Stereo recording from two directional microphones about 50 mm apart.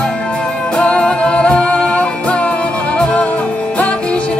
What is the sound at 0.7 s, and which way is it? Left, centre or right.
Music, left.